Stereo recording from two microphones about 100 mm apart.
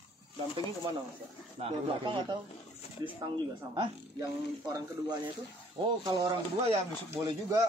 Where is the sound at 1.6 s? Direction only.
90° right.